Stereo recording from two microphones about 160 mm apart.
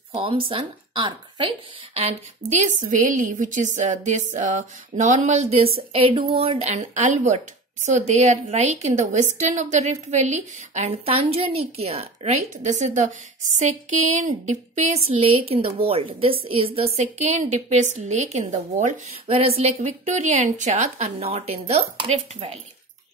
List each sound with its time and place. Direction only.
0.1 s speech: 35° right (ahead or behind)
2.0 s a woman's voice: 45° right (ahead or behind)